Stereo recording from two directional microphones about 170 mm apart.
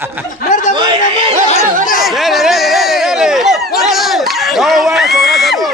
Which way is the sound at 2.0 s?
Centre (ahead or behind).